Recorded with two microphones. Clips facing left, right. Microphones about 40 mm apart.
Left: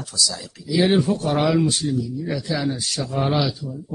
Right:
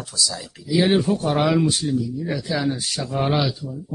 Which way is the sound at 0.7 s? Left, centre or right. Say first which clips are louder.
Even; centre.